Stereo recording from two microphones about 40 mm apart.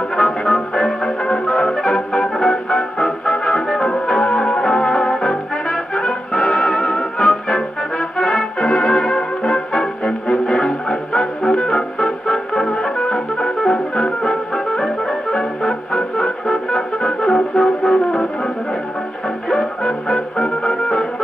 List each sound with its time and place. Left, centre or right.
0.1 s music: centre
19.5 s music: centre